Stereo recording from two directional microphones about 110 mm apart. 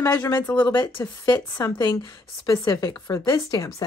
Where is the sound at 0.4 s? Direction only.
15° left (ahead or behind).